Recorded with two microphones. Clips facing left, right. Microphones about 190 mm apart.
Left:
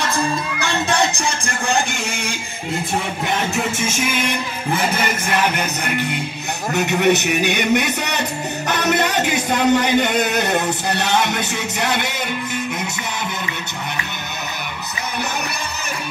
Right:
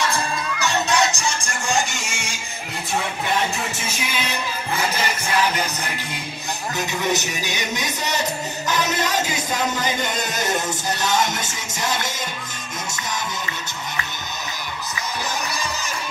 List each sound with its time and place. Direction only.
0.6 s music: 55° left (ahead or behind)
3.8 s music: 50° left (ahead or behind)
4.9 s speech: 60° left (ahead or behind)